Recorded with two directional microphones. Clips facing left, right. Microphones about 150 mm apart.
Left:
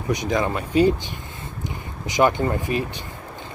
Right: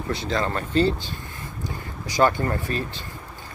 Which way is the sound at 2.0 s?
20° left (ahead or behind).